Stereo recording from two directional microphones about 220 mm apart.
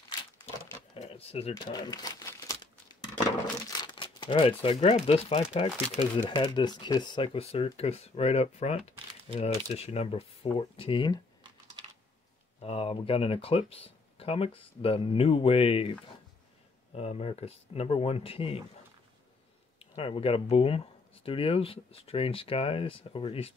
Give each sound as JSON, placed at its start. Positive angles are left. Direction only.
{"t": 0.2, "sound": "crumpling", "side_deg": 15}
{"t": 0.9, "sound": "crumpling", "side_deg": 30}
{"t": 3.7, "sound": "speech", "side_deg": 20}
{"t": 12.6, "sound": "speech", "side_deg": 25}
{"t": 19.8, "sound": "speech", "side_deg": 25}